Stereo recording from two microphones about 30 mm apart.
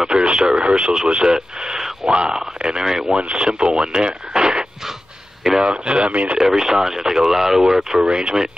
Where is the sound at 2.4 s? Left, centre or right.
Right.